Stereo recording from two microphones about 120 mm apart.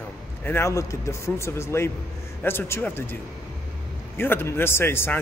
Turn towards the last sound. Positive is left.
turn(degrees=20)  # may be behind; listen again after turning